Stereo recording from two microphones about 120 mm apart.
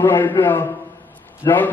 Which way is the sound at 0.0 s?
25° left (ahead or behind).